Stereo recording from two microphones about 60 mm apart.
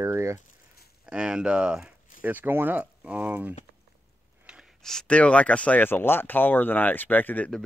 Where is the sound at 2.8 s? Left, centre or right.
Right.